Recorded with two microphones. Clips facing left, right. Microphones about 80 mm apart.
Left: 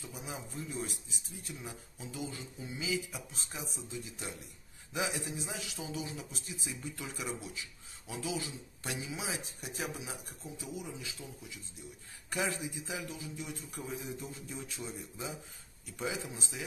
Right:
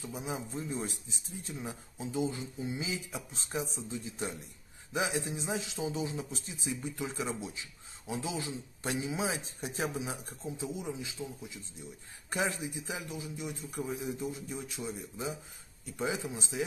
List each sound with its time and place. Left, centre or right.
0.0 s speech: right